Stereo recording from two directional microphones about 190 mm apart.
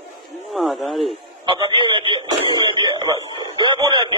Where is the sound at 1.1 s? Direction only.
25° right (ahead or behind).